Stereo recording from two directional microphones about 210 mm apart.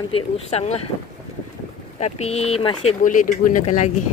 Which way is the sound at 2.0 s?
30° left (ahead or behind).